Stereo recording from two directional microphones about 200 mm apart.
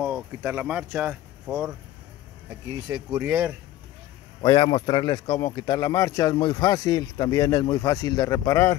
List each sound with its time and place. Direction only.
0.0 s speech: 5° right (ahead or behind)
4.4 s a man's voice: 25° left (ahead or behind)